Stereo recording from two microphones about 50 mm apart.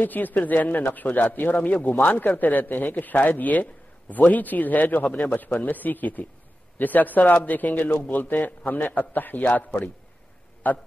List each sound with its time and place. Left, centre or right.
0.0 s a man's voice: left